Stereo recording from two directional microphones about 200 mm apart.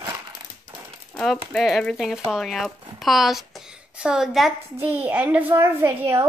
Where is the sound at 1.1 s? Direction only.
Centre (ahead or behind).